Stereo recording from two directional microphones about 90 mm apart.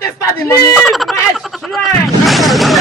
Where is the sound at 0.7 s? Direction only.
Centre (ahead or behind).